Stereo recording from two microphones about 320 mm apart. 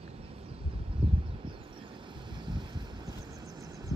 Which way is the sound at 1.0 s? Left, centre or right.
Centre.